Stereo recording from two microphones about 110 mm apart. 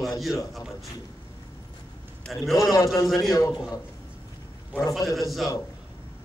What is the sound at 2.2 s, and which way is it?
Speech, centre (ahead or behind).